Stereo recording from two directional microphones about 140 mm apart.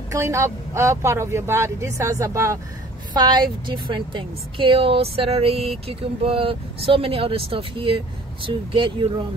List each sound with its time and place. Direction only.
0.1 s speech: 20° right (ahead or behind); by 9.3 s 35° right (ahead or behind)